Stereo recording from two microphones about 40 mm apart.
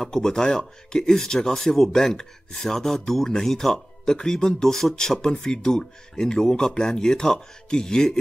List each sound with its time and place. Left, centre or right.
0.0 s speech: centre